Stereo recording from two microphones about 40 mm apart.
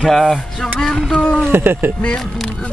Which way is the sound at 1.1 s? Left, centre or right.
Left.